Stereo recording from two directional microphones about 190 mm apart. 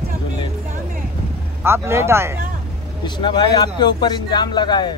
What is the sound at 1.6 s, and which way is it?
Speech, 15° right (ahead or behind).